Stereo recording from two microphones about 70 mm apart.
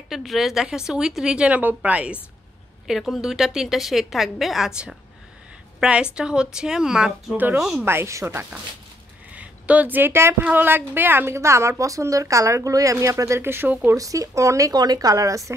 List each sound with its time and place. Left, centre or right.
0.1 s a woman's voice: centre
2.9 s a woman's voice: centre
5.8 s a woman's voice: centre
7.8 s a woman's voice: right
9.3 s a woman's voice: centre
13.9 s speech: right